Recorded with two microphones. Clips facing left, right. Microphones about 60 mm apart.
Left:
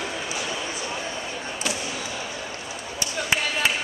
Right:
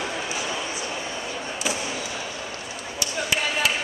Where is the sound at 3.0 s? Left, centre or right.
Left.